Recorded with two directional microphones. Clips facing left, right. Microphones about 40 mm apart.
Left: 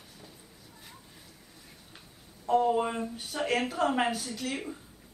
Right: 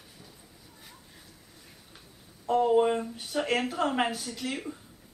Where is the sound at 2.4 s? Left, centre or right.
Centre.